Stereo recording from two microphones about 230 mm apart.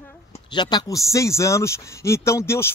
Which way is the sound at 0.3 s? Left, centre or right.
Centre.